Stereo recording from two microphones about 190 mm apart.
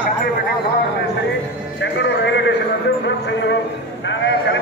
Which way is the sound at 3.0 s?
65° left (ahead or behind).